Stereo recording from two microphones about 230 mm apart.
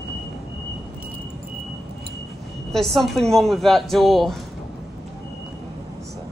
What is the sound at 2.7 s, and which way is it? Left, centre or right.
A woman's voice, centre.